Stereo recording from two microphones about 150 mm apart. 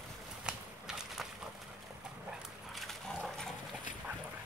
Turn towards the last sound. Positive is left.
turn(degrees=5)  # may be behind; listen again after turning